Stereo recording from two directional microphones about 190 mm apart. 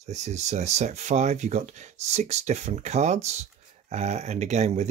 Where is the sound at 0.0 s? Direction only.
35° right (ahead or behind).